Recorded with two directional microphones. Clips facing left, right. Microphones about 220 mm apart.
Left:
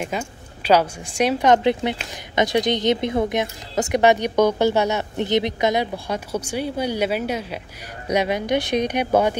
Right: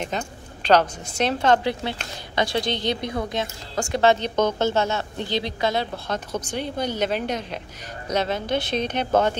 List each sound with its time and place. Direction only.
0.0 s a woman's voice: 10° left (ahead or behind)